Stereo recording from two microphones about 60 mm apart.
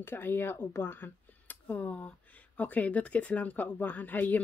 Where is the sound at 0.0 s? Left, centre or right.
Left.